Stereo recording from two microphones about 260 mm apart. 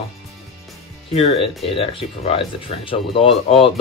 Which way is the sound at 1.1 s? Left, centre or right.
Left.